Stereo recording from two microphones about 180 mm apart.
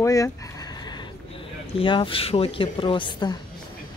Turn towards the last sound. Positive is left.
turn(degrees=25)  # may be behind; listen again after turning